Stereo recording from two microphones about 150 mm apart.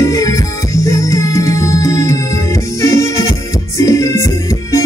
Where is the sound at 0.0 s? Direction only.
20° left (ahead or behind).